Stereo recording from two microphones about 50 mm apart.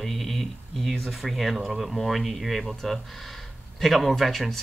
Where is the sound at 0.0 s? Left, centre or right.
Centre.